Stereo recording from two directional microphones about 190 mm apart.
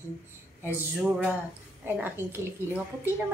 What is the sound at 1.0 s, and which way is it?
A woman's voice, 5° right (ahead or behind).